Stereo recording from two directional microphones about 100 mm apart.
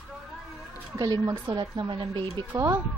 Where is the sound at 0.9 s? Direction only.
35° right (ahead or behind); by 2.2 s 50° right (ahead or behind).